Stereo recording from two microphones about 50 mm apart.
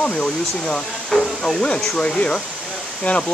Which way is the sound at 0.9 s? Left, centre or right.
Centre.